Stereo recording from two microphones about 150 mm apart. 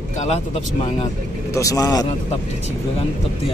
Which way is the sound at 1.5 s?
20° left (ahead or behind).